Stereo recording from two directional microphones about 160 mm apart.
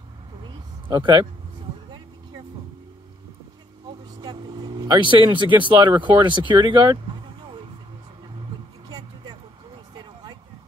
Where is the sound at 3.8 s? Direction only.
25° right (ahead or behind).